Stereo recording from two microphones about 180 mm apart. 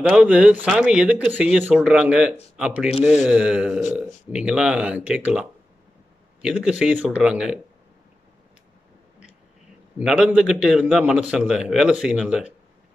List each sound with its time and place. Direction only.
0.1 s a man's voice: 5° right (ahead or behind)
9.9 s a man's voice: 5° right (ahead or behind)